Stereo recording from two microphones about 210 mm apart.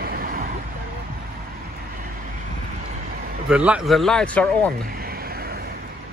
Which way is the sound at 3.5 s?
5° right (ahead or behind).